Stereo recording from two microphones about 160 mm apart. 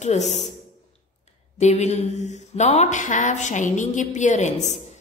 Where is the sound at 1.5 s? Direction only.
45° left (ahead or behind).